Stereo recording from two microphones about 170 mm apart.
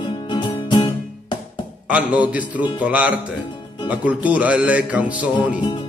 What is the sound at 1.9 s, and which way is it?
Music, 10° right (ahead or behind).